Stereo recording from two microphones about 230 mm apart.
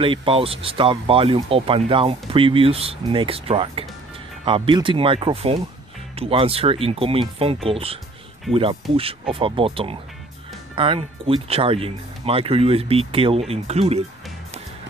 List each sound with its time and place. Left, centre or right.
0.0 s speech: right